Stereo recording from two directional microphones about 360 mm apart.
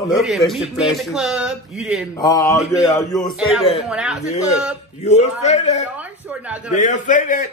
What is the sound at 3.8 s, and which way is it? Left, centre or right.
Speech, centre.